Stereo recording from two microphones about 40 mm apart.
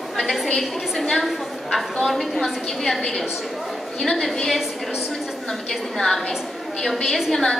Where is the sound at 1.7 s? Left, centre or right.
Centre.